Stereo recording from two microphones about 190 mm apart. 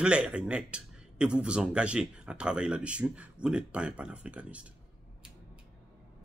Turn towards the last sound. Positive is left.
turn(degrees=-5)  # may be behind; listen again after turning